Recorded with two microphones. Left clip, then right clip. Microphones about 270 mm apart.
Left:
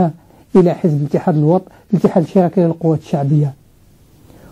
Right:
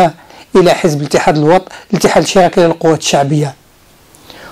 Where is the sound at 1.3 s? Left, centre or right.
Right.